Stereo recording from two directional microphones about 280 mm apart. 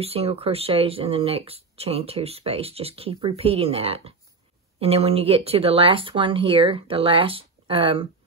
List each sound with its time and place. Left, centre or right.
0.0 s speech: right